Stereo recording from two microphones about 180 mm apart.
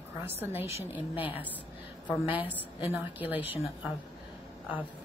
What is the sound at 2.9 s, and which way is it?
Speech, 10° right (ahead or behind).